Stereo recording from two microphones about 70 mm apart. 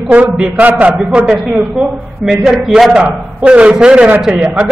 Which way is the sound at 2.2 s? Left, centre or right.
Centre.